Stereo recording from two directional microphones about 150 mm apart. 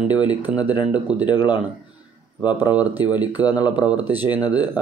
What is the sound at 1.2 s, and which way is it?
Speech, 30° left (ahead or behind).